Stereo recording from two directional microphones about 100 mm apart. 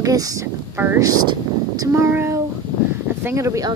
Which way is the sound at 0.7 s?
25° right (ahead or behind).